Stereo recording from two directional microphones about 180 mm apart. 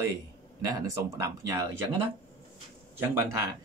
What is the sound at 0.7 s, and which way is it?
Speech, 20° right (ahead or behind).